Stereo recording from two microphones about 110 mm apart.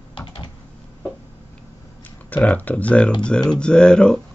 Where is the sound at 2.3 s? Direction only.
15° left (ahead or behind).